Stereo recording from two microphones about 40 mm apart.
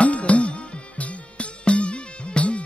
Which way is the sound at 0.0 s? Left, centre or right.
Left.